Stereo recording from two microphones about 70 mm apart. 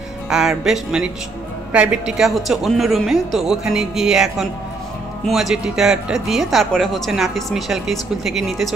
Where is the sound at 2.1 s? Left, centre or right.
Centre.